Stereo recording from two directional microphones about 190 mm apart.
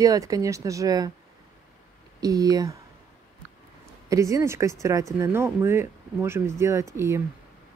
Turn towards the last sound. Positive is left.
turn(degrees=-15)  # may be behind; listen again after turning